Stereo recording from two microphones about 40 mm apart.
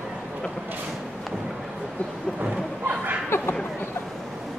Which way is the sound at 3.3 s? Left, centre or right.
Left.